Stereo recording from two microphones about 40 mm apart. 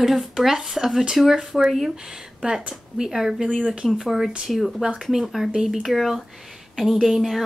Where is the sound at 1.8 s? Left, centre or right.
Centre.